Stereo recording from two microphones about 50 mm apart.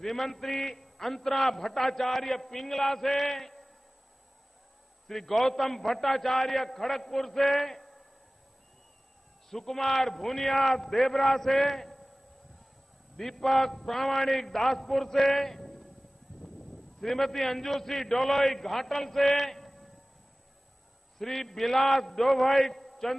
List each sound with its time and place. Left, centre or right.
0.0 s a man's voice: centre
5.0 s a man's voice: centre
9.5 s a man's voice: centre
13.1 s a man's voice: centre
17.0 s a man's voice: centre
21.2 s a man's voice: centre